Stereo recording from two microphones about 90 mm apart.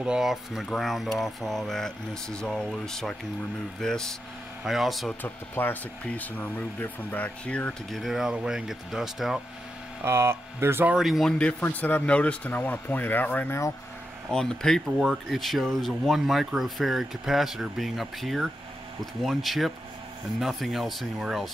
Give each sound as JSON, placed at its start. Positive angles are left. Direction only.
{"t": 0.0, "sound": "speech", "side_deg": -5}
{"t": 5.2, "sound": "speech", "side_deg": 20}
{"t": 7.9, "sound": "speech", "side_deg": 0}
{"t": 10.0, "sound": "speech", "side_deg": -30}
{"t": 10.9, "sound": "speech", "side_deg": -5}
{"t": 11.6, "sound": "speech", "side_deg": 20}
{"t": 14.3, "sound": "speech", "side_deg": 5}